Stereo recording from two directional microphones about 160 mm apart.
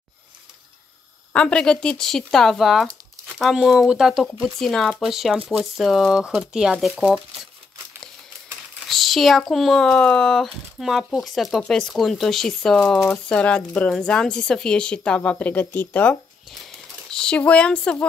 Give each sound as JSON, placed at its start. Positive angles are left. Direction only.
{"t": 1.3, "sound": "speech", "side_deg": 5}
{"t": 8.8, "sound": "speech", "side_deg": 0}